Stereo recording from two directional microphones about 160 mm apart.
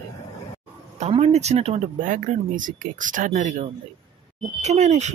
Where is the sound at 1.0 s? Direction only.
40° right (ahead or behind).